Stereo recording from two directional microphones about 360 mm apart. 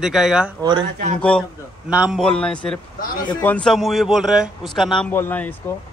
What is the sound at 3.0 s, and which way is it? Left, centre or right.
Speech, left.